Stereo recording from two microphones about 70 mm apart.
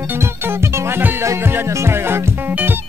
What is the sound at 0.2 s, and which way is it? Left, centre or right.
Music, right.